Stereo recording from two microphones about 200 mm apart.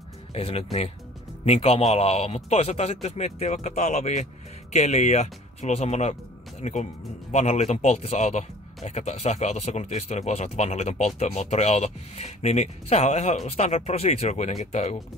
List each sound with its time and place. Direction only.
0.3 s speech: 30° left (ahead or behind)